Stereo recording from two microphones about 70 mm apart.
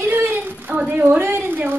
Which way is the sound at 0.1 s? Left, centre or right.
Right.